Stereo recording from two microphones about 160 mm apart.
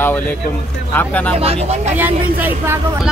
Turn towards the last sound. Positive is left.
turn(degrees=-10)  # may be behind; listen again after turning